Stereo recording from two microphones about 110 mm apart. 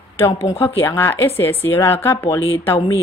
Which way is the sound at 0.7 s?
20° left (ahead or behind).